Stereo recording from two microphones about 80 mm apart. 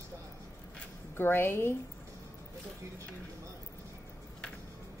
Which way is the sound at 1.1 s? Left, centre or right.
Left.